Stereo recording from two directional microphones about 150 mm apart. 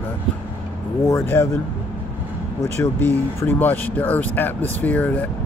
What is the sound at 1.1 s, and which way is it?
Speech, 15° left (ahead or behind).